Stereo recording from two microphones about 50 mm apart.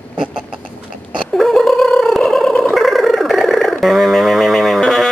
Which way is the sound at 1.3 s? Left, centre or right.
Centre.